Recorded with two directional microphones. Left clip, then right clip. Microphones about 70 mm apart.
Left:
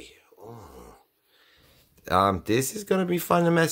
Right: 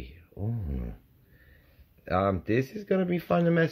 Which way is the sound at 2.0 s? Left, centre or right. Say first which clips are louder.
Left 5 dB; centre.